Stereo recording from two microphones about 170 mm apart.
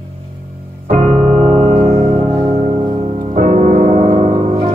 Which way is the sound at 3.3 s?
45° right (ahead or behind).